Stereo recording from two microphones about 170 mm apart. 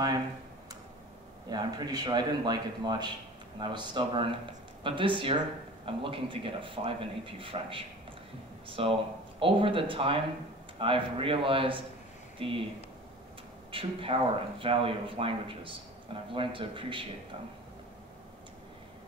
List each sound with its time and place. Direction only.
1.5 s a man's voice: 25° right (ahead or behind)
13.7 s speech: 30° right (ahead or behind)